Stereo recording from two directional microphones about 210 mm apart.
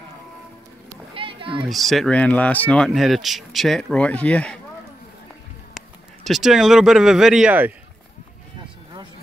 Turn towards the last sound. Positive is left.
turn(degrees=-5)  # may be behind; listen again after turning